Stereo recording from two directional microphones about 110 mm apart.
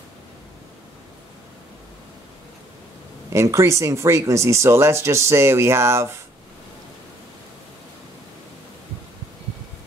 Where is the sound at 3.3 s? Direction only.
25° right (ahead or behind).